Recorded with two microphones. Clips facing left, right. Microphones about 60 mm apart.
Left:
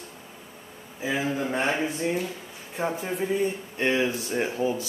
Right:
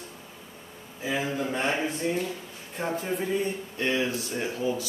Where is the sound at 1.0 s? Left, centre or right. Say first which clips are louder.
Left 2 dB; centre.